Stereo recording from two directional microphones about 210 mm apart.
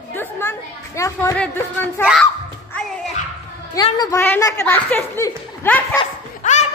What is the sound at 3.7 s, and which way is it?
Speech, 20° left (ahead or behind).